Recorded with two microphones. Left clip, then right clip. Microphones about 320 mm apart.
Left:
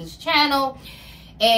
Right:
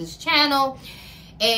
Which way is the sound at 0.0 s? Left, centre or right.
Centre.